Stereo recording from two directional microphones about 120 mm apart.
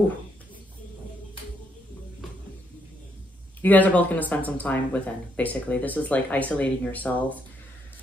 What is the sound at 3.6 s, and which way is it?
Speech, 15° left (ahead or behind).